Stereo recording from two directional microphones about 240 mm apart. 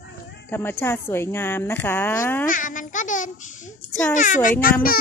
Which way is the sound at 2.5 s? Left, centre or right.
Left.